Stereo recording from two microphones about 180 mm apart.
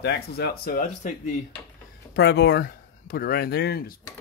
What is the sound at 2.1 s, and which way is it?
Speech, 65° left (ahead or behind).